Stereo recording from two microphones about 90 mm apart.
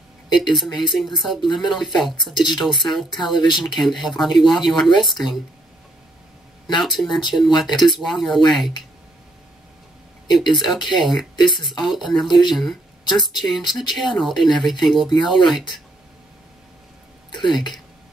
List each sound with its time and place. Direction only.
0.4 s speech: centre (ahead or behind)
6.8 s speech: centre (ahead or behind)
10.5 s speech: centre (ahead or behind)
17.5 s speech: centre (ahead or behind)